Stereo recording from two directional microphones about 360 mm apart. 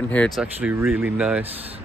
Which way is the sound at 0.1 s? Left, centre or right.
Centre.